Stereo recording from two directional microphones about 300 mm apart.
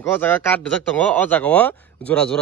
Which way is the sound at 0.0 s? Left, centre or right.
Centre.